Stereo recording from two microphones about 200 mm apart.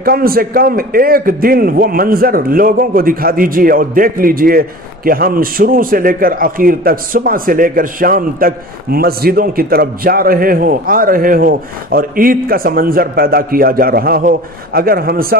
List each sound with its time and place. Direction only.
0.0 s a man's voice: 50° right (ahead or behind)